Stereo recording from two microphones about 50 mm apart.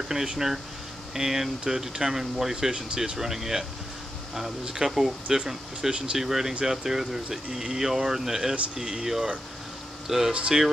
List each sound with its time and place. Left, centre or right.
0.1 s speech: centre
4.6 s speech: centre
10.3 s speech: right